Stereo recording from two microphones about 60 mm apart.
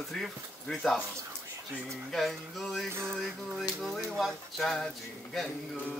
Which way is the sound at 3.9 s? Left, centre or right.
Centre.